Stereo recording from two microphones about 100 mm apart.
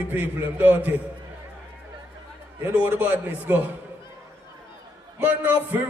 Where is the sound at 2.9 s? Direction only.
20° right (ahead or behind).